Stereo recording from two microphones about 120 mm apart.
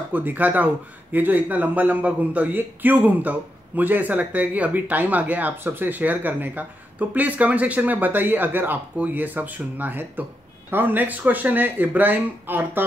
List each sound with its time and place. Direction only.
0.1 s a man's voice: 15° right (ahead or behind)